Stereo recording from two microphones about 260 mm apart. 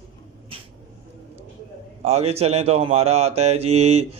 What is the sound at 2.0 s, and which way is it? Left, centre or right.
Speech, right.